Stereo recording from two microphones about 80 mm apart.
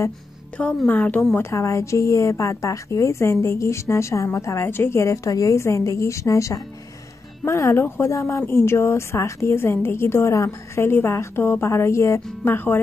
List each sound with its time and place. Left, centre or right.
0.8 s speech: left
1.4 s speech: left